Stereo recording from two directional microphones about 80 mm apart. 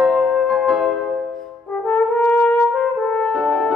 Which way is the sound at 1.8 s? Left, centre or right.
Centre.